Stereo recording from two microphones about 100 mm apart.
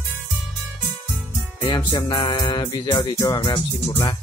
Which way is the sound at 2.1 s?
45° left (ahead or behind).